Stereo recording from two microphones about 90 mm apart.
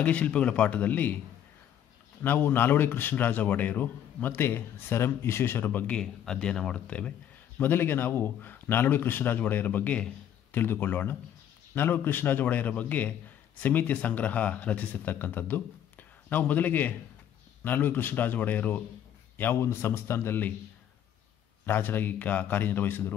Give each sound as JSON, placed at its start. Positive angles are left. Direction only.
{"t": 0.0, "sound": "a man's voice", "side_deg": 15}
{"t": 2.2, "sound": "a man's voice", "side_deg": 25}
{"t": 21.6, "sound": "a man's voice", "side_deg": 25}